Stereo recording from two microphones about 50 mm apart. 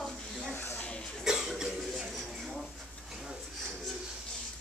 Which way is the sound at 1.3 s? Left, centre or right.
Centre.